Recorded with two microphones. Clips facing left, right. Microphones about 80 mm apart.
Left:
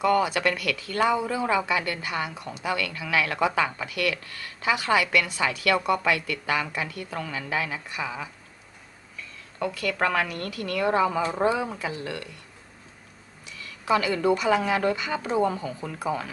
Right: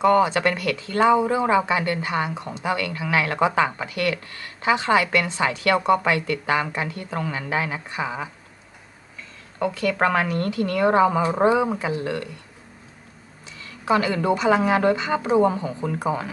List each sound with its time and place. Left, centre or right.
0.0 s speech: right
9.6 s speech: right
13.6 s speech: right